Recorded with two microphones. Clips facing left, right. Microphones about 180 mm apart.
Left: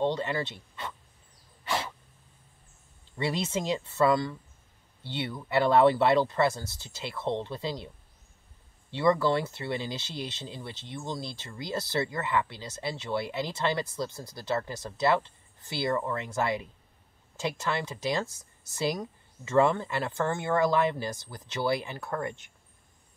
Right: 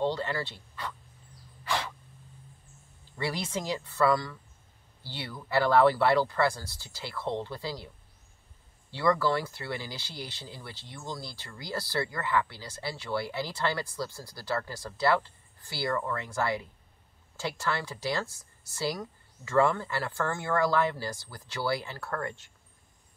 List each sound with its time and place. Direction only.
0.0 s speech: 20° left (ahead or behind)
1.6 s sneeze: 25° left (ahead or behind)
3.2 s speech: 20° left (ahead or behind)
8.9 s speech: 20° left (ahead or behind)